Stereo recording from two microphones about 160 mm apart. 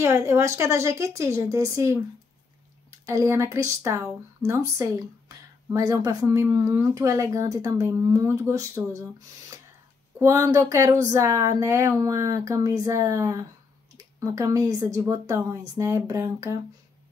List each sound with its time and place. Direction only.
0.0 s a woman's voice: 15° right (ahead or behind)
3.1 s speech: 20° right (ahead or behind)
10.1 s speech: 15° right (ahead or behind)